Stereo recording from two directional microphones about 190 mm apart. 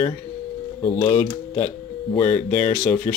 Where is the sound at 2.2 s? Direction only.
10° left (ahead or behind).